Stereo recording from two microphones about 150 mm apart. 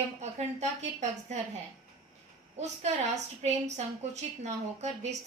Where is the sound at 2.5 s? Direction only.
45° right (ahead or behind).